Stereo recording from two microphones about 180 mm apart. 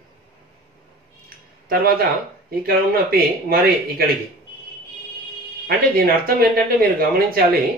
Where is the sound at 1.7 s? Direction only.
55° right (ahead or behind).